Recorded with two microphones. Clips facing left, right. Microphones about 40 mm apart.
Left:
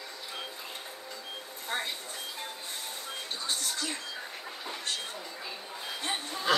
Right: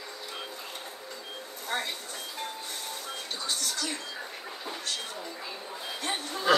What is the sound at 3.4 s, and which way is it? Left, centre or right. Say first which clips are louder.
Music: right 1 dB; left.